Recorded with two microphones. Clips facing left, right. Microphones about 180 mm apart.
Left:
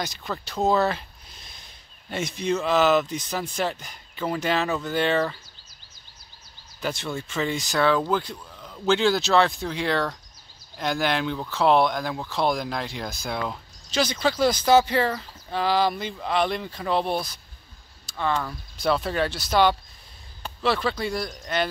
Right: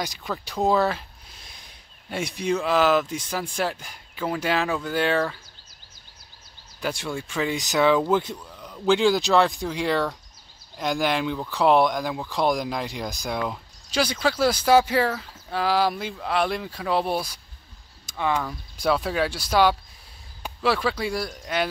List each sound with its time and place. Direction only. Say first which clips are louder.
0.6 s speech: even; 5° right (ahead or behind)
2.0 s speech: even; 10° right (ahead or behind)
6.8 s speech: right 1 dB; 10° right (ahead or behind)
8.5 s a sound: right 1 dB; centre (ahead or behind)
8.8 s speech: right 2 dB; 10° right (ahead or behind)
9.6 s speech: right 1 dB; centre (ahead or behind)